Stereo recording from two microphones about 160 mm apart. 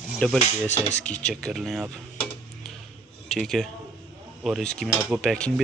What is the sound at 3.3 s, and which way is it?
Speech, centre (ahead or behind).